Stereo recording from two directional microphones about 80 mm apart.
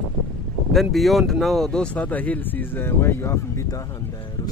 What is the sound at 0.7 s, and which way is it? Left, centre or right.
Speech, centre.